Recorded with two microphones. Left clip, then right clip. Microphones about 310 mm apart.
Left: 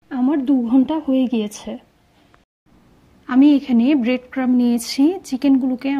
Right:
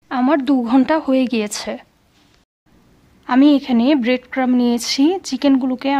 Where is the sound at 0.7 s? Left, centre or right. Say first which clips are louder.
Right 3 dB; right.